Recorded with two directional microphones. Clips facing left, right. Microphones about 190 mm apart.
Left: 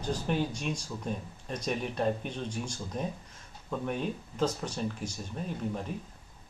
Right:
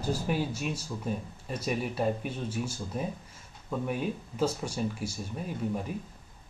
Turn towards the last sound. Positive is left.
turn(degrees=-5)  # may be behind; listen again after turning